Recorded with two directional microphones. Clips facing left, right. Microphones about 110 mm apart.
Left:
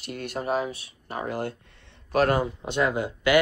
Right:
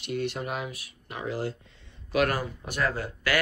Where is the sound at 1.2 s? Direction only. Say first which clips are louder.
Even; 55° left (ahead or behind).